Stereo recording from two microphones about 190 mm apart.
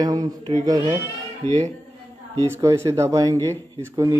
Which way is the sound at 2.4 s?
15° right (ahead or behind).